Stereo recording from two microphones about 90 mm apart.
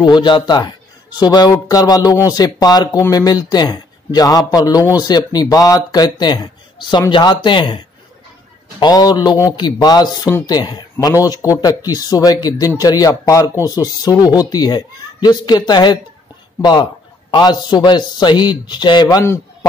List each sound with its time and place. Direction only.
0.0 s a man's voice: 55° left (ahead or behind)
8.7 s speech: 50° left (ahead or behind)
17.3 s a man's voice: 55° left (ahead or behind)